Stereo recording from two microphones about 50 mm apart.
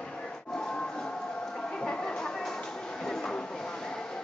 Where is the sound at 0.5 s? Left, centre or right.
Centre.